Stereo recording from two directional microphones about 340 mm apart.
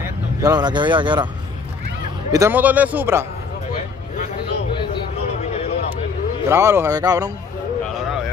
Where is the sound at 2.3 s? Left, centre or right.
Centre.